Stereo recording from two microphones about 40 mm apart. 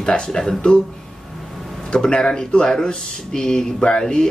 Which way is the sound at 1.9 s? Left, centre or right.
Left.